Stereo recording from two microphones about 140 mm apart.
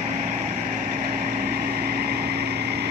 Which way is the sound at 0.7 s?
80° right.